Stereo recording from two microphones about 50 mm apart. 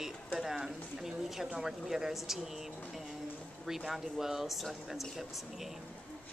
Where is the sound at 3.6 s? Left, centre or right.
Centre.